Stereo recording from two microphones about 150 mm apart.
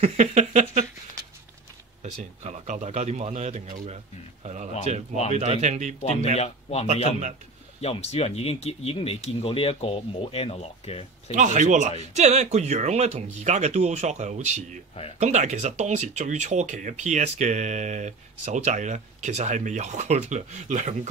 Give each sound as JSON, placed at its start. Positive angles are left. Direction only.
{"t": 0.0, "sound": "a sound", "side_deg": -50}
{"t": 2.4, "sound": "speech", "side_deg": -50}
{"t": 3.6, "sound": "speech", "side_deg": -65}
{"t": 3.9, "sound": "speech", "side_deg": -50}
{"t": 6.3, "sound": "speech", "side_deg": 45}
{"t": 11.3, "sound": "speech", "side_deg": -55}